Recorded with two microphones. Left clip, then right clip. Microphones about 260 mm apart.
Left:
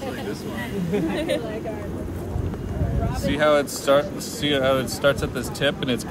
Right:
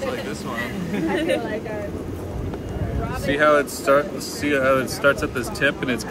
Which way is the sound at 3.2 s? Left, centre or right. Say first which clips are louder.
Right 2 dB; left.